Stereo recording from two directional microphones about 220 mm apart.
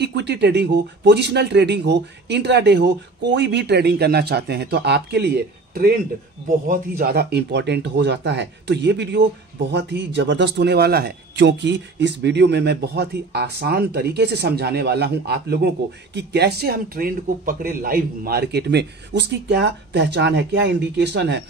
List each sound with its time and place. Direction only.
0.0 s a man's voice: 50° right (ahead or behind)